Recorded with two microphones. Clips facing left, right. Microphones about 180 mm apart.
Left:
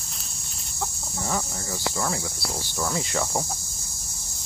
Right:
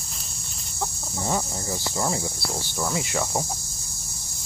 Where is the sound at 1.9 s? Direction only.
25° right (ahead or behind).